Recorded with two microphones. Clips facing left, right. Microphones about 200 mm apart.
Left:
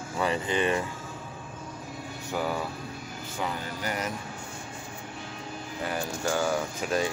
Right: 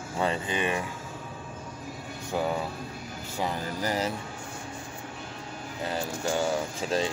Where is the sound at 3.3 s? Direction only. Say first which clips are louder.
Right 3 dB; 30° right (ahead or behind).